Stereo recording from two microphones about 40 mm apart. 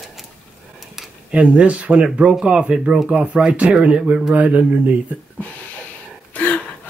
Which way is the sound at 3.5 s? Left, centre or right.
Right.